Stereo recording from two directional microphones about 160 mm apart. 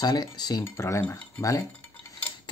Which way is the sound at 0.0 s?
25° left (ahead or behind).